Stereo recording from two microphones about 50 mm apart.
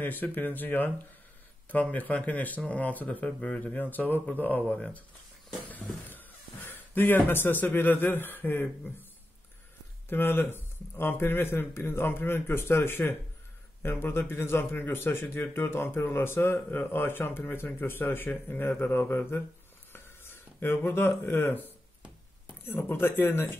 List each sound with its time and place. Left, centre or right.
0.0 s speech: left
4.7 s speech: left
5.7 s speech: left
10.0 s a man's voice: left
12.4 s a man's voice: left
19.9 s a sound: left
22.7 s a man's voice: left